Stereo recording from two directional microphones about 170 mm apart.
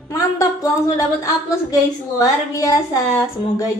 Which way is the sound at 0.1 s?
20° left (ahead or behind).